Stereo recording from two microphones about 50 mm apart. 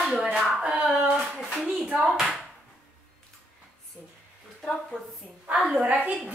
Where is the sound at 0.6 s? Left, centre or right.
Right.